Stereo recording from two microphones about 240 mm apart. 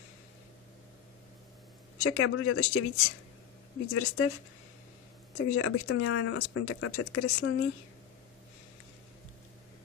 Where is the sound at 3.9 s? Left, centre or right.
Left.